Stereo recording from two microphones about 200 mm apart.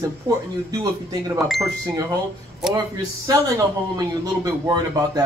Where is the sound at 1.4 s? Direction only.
Centre (ahead or behind).